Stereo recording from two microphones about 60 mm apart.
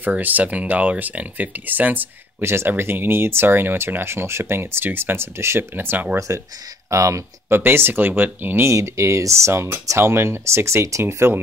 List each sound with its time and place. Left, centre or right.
0.0 s speech: right
2.4 s speech: right
6.1 s speech: right
7.4 s speech: right
8.6 s speech: right